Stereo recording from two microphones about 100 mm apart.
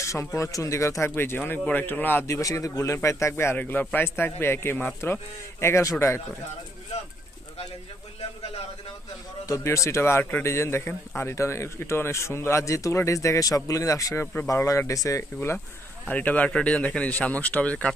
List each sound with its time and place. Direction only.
0.0 s a man's voice: 30° left (ahead or behind)
9.5 s a man's voice: 30° left (ahead or behind)
14.2 s a man's voice: 20° left (ahead or behind)
14.5 s a man's voice: 30° left (ahead or behind)
16.1 s speech: 15° left (ahead or behind)